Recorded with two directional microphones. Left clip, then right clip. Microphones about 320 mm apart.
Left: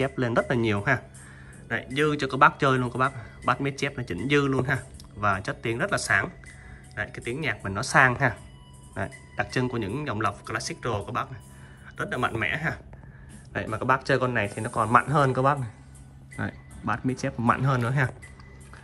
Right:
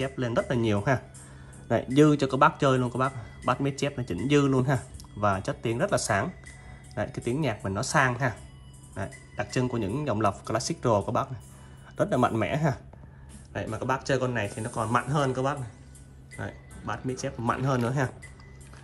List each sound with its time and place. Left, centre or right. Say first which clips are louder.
0.1 s speech: left 3 dB; centre
12.1 s speech: even; centre
13.5 s speech: left 5 dB; centre